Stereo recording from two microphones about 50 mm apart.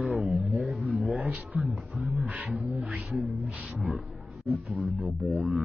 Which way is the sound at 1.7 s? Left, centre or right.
Centre.